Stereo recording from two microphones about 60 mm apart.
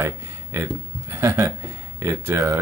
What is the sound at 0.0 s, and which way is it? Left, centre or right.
Speech, right.